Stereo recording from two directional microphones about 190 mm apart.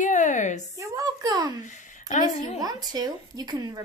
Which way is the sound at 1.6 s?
40° left (ahead or behind).